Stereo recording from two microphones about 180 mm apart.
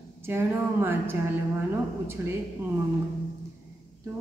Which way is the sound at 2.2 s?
15° right (ahead or behind).